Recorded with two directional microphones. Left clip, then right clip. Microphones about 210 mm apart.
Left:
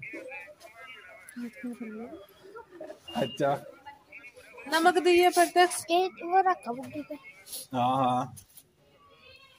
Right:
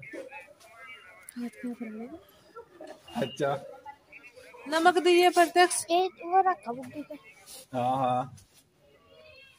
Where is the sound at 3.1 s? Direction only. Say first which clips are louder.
Left 2 dB; 25° left (ahead or behind).